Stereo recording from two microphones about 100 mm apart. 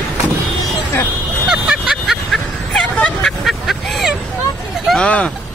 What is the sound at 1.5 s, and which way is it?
Vehicle, 5° right (ahead or behind).